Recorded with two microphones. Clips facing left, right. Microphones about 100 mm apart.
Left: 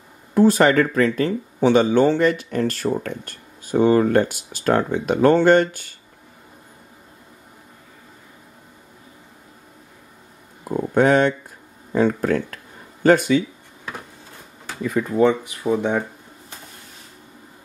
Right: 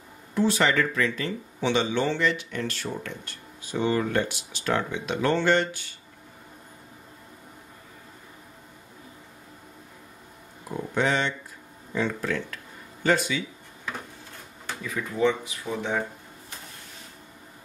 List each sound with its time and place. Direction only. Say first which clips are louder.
0.3 s speech: left 8 dB; 45° left (ahead or behind)
10.7 s a sound: left 9 dB; 50° left (ahead or behind)
11.9 s speech: left 9 dB; 45° left (ahead or behind)
14.8 s speech: left 8 dB; 45° left (ahead or behind)